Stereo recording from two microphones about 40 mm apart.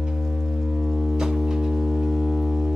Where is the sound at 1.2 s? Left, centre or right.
Centre.